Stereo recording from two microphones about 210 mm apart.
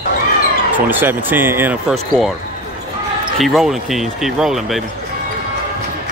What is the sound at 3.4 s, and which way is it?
Speech, centre (ahead or behind).